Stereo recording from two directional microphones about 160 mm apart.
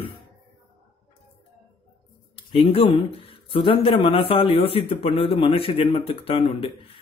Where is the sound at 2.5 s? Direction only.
35° left (ahead or behind).